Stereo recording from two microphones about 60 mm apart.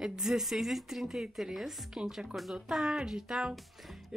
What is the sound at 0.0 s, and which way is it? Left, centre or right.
Speech, centre.